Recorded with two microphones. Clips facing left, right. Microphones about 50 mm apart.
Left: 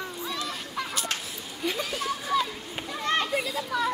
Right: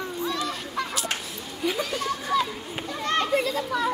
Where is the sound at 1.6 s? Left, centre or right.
Centre.